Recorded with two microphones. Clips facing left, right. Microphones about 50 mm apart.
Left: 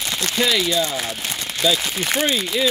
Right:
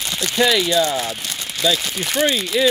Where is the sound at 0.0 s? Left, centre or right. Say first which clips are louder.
Even; centre.